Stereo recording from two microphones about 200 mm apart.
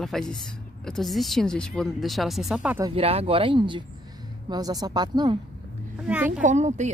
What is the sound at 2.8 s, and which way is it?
Speech, 30° right (ahead or behind).